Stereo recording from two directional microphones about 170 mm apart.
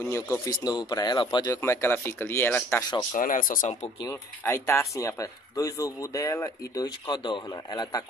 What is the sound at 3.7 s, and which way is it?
Speech, 35° left (ahead or behind).